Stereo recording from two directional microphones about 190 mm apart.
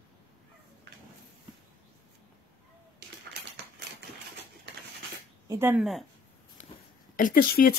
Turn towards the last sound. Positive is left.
turn(degrees=50)  # may be behind; listen again after turning